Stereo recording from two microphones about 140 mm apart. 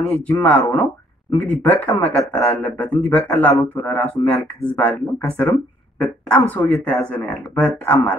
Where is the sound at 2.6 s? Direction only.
10° left (ahead or behind).